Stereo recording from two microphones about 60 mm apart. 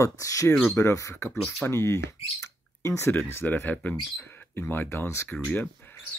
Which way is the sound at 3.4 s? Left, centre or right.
Left.